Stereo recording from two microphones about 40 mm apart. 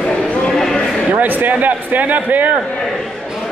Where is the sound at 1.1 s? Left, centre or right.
Right.